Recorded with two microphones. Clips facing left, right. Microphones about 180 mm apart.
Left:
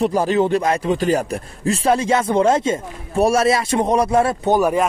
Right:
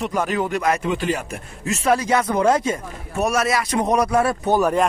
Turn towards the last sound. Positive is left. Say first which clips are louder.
# left 2 dB
turn(degrees=15)  # may be behind; listen again after turning